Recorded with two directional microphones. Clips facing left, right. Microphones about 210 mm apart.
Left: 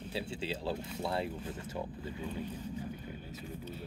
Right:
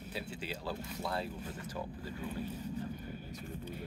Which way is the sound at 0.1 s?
25° left (ahead or behind).